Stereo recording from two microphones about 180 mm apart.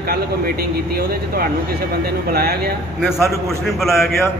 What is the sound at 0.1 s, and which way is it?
Speech, 60° right (ahead or behind).